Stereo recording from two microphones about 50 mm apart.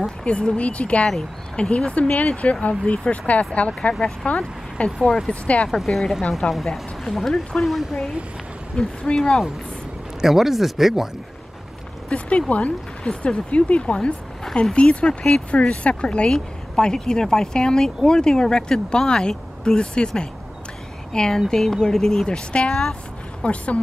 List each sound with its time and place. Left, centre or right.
0.2 s speech: centre
4.9 s speech: centre
5.3 s speech: left
5.7 s a woman's voice: centre
10.2 s speech: centre
12.1 s speech: left
13.0 s speech: centre
16.3 s speech: centre
23.4 s speech: left